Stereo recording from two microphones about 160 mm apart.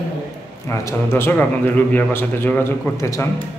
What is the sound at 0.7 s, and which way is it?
A man's voice, 15° left (ahead or behind).